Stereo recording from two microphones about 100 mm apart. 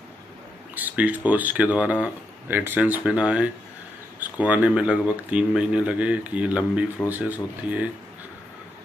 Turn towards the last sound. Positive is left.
turn(degrees=-15)  # may be behind; listen again after turning